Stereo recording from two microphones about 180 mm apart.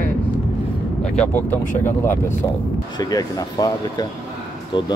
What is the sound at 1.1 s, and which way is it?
Speech, 10° left (ahead or behind).